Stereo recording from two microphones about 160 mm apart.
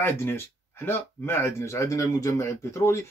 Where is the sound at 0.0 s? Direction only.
15° left (ahead or behind).